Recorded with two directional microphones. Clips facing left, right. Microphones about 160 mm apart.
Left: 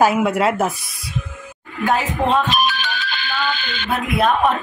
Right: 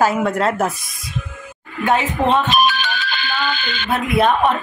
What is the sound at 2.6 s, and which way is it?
Music, 65° right (ahead or behind).